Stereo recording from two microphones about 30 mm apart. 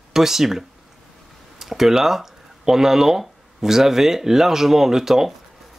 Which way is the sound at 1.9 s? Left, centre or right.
Centre.